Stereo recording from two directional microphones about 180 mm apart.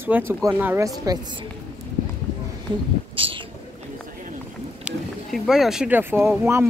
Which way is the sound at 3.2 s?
30° right (ahead or behind).